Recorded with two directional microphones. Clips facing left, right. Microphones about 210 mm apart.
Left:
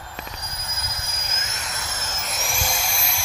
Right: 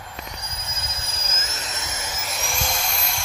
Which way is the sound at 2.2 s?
Centre (ahead or behind).